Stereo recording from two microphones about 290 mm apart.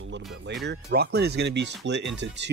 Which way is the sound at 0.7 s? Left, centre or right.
Right.